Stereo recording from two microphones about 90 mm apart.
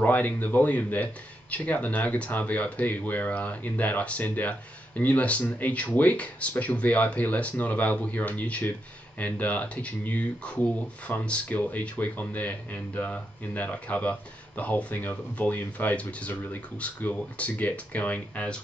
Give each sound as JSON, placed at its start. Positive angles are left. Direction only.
{"t": 0.0, "sound": "speech", "side_deg": 20}